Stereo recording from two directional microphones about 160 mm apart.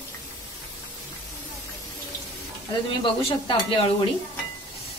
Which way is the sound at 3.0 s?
35° left (ahead or behind).